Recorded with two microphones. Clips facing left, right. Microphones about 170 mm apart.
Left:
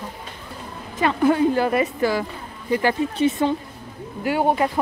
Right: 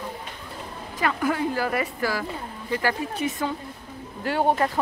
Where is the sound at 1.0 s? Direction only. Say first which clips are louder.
Left 7 dB; 25° left (ahead or behind).